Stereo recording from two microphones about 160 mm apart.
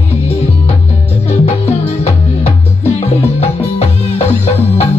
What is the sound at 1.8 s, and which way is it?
Music, 40° left (ahead or behind).